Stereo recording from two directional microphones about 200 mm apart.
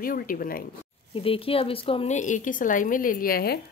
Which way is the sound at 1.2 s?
30° left (ahead or behind).